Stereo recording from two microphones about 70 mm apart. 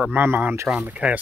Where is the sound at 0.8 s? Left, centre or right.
Centre.